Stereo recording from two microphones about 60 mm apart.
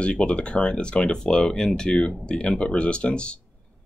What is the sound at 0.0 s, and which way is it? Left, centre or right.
Speech, centre.